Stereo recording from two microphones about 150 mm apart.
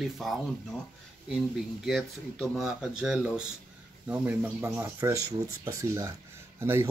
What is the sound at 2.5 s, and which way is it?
Speech, centre (ahead or behind).